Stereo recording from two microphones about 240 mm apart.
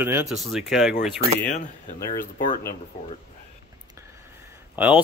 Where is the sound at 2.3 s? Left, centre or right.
Left.